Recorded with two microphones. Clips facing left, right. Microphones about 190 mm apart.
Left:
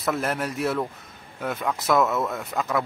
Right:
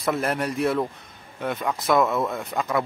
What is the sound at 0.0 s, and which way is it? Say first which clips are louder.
Speech: right 1 dB; centre (ahead or behind).